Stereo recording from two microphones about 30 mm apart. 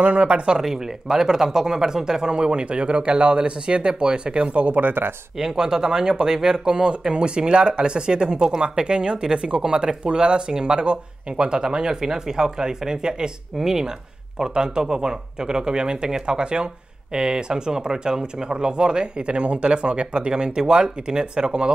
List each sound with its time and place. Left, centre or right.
0.0 s speech: right
0.6 s speech: centre; by 4.5 s right
4.6 s speech: right
5.4 s speech: right
13.6 s speech: centre